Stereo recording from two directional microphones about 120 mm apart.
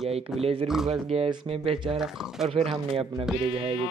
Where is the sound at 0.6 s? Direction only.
5° right (ahead or behind).